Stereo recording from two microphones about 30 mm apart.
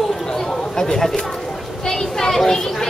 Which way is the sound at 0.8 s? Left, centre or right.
Centre.